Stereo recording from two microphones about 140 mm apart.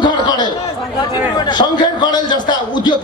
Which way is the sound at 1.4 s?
30° left (ahead or behind).